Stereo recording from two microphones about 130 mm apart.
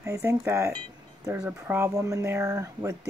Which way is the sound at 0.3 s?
25° right (ahead or behind).